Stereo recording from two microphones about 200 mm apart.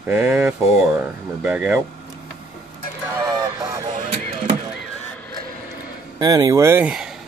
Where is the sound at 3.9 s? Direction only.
40° right (ahead or behind).